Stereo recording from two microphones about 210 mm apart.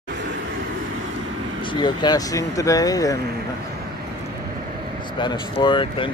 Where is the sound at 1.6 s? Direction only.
20° left (ahead or behind).